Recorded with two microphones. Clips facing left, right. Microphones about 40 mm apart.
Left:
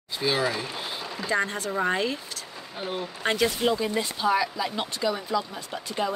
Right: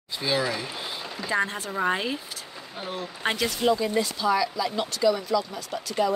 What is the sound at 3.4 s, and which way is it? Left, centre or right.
Speech, centre.